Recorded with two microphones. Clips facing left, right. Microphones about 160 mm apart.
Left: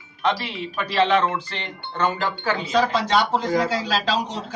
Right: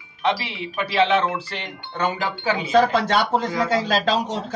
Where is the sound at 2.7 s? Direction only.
50° right (ahead or behind).